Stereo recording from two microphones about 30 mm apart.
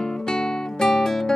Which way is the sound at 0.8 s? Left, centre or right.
Centre.